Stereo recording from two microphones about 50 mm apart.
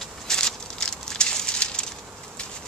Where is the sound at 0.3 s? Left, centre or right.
Centre.